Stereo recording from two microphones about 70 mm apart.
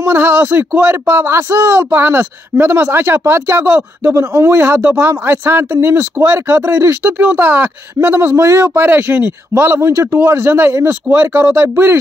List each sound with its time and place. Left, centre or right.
0.0 s speech: right